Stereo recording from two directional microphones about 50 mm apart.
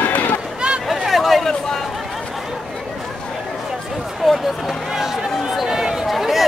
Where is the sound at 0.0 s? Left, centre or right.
Left.